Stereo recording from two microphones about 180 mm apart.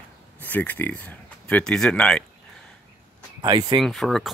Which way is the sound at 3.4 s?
20° right (ahead or behind).